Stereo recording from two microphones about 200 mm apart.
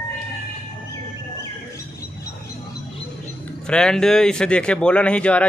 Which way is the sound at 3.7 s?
5° left (ahead or behind).